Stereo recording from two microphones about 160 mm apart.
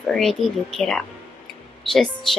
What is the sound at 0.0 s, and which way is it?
Speech, centre (ahead or behind).